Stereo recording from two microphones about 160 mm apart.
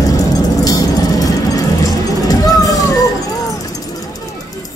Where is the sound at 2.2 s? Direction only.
25° left (ahead or behind).